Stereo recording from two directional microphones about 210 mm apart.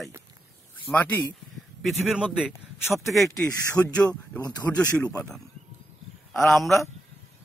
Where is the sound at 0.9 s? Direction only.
10° left (ahead or behind).